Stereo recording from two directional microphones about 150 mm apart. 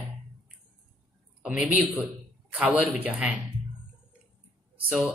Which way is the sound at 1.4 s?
10° right (ahead or behind).